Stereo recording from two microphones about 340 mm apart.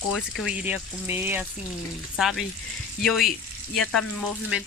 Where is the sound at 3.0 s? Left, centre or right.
Centre.